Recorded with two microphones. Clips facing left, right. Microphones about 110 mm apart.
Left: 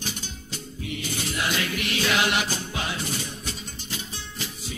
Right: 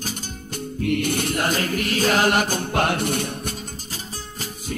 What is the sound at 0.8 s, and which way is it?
Music, 60° right (ahead or behind).